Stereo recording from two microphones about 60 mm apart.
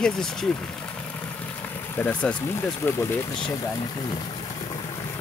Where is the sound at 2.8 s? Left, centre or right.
Left.